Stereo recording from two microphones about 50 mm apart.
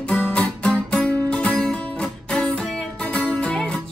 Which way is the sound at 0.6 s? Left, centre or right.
Centre.